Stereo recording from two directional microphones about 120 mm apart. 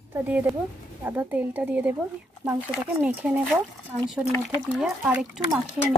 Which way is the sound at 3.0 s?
15° right (ahead or behind).